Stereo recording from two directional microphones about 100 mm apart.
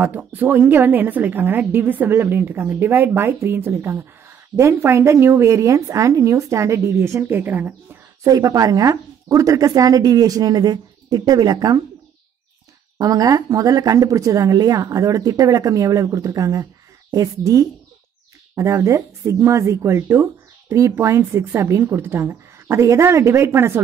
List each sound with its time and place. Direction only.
0.0 s a woman's voice: 15° right (ahead or behind)
8.2 s speech: 35° right (ahead or behind)
12.9 s a woman's voice: 35° right (ahead or behind)